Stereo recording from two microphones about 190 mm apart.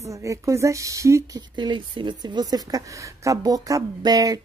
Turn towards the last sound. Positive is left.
turn(degrees=-20)  # may be behind; listen again after turning